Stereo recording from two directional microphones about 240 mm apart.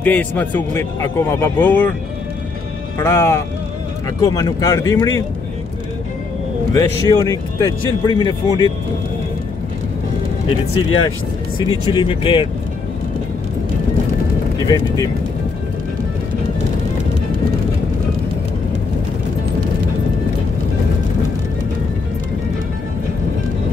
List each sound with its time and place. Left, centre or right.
0.0 s speech: centre
3.0 s speech: centre
6.7 s speech: centre
10.7 s speech: left
11.5 s speech: centre